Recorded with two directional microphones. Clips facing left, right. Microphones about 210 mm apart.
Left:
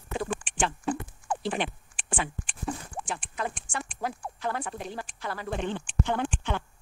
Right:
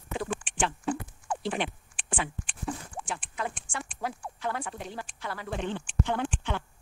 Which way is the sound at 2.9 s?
40° left (ahead or behind).